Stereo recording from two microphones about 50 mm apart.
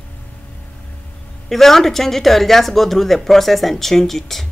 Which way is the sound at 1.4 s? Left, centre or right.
Centre.